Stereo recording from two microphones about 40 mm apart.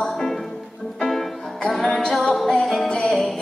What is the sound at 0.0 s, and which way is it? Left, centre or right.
Music, centre.